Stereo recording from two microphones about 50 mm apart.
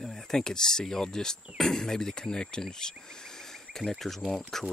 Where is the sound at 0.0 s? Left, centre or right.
Centre.